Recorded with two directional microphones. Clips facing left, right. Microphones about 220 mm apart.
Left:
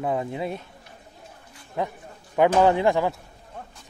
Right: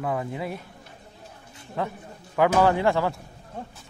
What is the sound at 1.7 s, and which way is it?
A man's voice, 20° left (ahead or behind).